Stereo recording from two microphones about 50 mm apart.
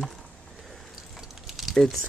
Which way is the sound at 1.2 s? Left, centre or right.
Centre.